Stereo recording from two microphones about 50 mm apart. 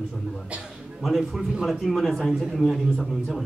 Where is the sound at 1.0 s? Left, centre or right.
Centre.